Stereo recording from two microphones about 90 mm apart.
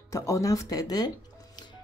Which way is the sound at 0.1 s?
35° left (ahead or behind).